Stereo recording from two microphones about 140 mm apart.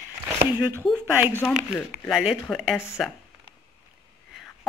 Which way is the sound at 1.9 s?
5° right (ahead or behind).